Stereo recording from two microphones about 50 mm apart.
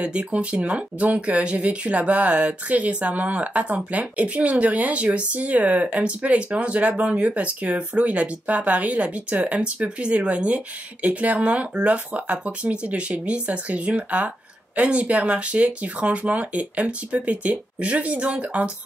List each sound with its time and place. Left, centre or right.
0.0 s speech: right